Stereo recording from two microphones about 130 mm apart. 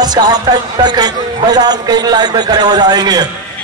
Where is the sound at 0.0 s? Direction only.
30° right (ahead or behind).